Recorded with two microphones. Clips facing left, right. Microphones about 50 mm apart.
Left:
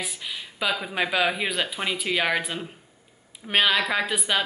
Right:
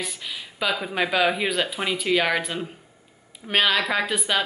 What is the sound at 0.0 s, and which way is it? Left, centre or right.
A woman's voice, centre.